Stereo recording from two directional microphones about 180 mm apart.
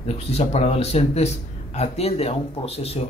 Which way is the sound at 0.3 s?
35° left (ahead or behind).